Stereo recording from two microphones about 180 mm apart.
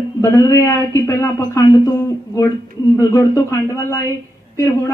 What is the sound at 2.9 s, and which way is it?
A woman's voice, 20° left (ahead or behind).